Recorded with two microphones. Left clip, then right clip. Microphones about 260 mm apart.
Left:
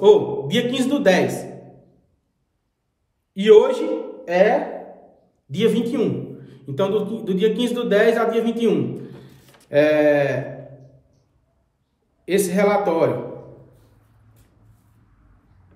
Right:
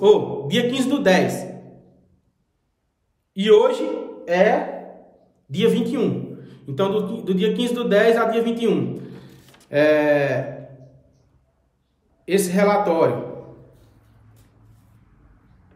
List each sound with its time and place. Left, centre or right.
0.0 s a man's voice: centre
3.3 s a man's voice: centre
5.5 s a man's voice: centre
12.3 s a man's voice: centre